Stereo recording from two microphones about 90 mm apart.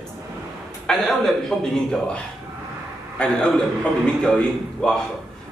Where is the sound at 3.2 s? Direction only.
15° left (ahead or behind).